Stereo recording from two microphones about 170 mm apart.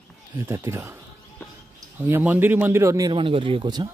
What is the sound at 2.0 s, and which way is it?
A man's voice, 10° right (ahead or behind).